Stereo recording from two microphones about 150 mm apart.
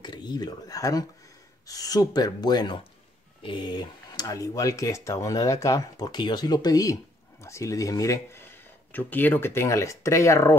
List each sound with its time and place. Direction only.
0.0 s speech: 30° left (ahead or behind)